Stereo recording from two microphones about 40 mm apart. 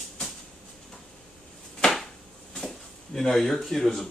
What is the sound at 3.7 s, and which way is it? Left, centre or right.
Speech, centre.